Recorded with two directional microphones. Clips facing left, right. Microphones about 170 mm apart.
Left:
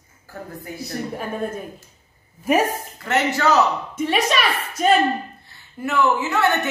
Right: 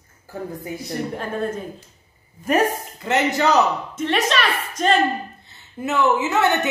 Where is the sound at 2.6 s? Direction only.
15° right (ahead or behind).